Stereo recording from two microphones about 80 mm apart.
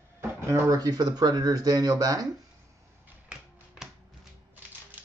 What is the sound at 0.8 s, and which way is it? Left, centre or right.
A man's voice, right.